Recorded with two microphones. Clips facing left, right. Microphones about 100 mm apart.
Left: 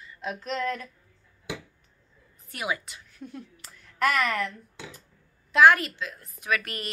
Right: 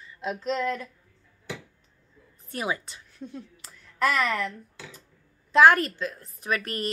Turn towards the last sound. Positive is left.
turn(degrees=-35)  # may be behind; listen again after turning